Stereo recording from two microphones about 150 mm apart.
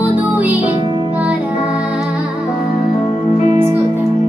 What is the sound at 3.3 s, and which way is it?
Music, 45° left (ahead or behind).